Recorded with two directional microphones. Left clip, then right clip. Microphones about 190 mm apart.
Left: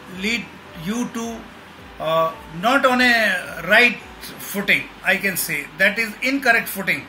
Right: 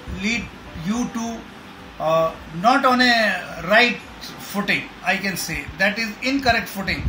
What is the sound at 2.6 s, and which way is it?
Speech, 15° left (ahead or behind).